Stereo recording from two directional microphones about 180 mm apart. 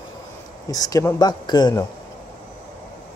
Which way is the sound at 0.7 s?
20° left (ahead or behind).